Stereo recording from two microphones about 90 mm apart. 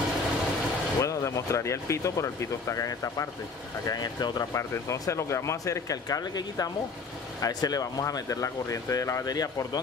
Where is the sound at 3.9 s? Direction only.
50° left (ahead or behind).